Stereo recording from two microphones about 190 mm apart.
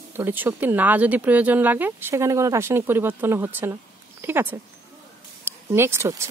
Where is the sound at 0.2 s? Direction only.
10° right (ahead or behind).